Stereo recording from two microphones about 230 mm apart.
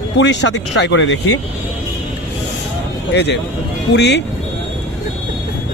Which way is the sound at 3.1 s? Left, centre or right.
Left.